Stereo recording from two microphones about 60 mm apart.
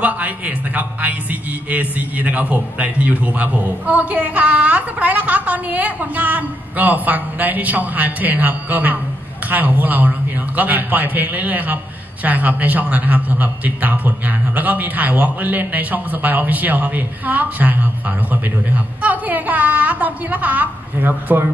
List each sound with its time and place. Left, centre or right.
0.0 s a man's voice: right
19.0 s a man's voice: right